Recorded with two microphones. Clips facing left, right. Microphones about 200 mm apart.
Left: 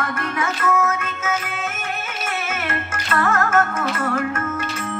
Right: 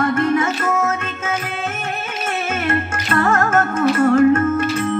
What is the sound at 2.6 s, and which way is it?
Music, 30° right (ahead or behind).